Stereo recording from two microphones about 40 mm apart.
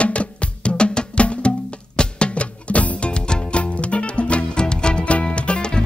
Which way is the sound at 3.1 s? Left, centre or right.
Left.